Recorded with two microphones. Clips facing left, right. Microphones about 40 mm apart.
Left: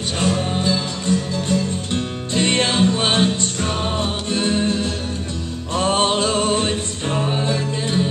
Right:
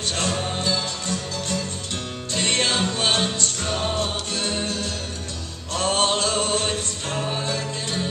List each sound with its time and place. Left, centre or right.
0.2 s music: centre